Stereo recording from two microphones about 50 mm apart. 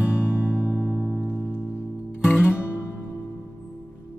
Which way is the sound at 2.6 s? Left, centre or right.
Left.